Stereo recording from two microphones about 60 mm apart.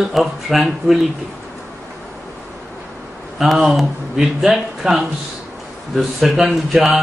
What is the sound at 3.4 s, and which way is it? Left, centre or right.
Speech, centre.